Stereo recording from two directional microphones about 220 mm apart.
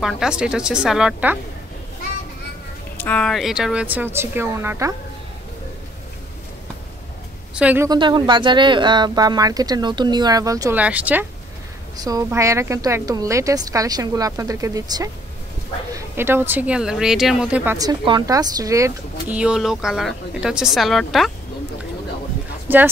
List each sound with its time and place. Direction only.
0.0 s a woman's voice: centre (ahead or behind)
3.0 s speech: 5° left (ahead or behind); by 4.9 s 10° right (ahead or behind)
7.5 s a woman's voice: 5° right (ahead or behind)